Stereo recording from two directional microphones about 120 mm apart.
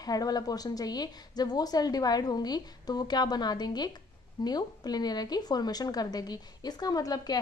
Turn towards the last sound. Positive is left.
turn(degrees=30)  # may be behind; listen again after turning